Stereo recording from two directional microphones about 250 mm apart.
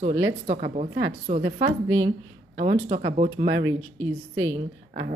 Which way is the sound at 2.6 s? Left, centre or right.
Right.